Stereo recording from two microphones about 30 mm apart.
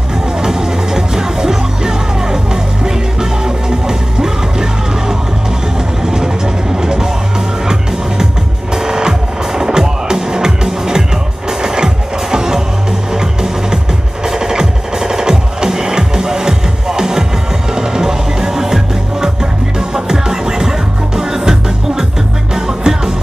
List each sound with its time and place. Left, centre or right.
0.4 s music: centre
8.7 s music: right